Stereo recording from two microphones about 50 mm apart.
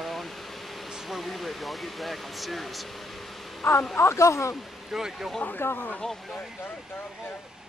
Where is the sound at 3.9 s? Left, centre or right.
Left.